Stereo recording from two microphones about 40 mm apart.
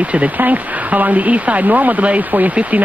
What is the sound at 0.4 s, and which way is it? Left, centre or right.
Speech, right.